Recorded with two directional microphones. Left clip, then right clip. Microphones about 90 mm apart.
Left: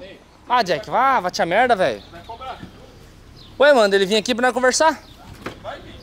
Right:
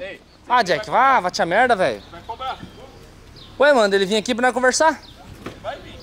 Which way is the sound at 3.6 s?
5° left (ahead or behind).